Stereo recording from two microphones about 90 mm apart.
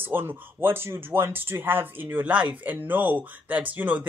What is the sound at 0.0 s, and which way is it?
Speech, 25° right (ahead or behind).